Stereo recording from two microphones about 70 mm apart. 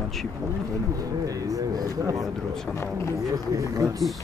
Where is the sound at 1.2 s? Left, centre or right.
Right.